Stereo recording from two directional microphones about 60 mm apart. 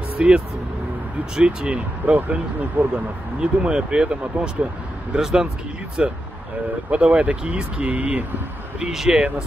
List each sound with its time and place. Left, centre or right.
0.2 s speech: centre
3.3 s speech: centre
8.7 s speech: centre